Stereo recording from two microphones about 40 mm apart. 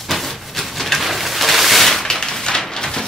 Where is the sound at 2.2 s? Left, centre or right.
Centre.